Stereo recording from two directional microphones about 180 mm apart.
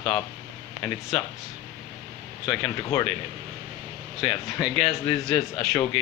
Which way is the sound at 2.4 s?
5° left (ahead or behind).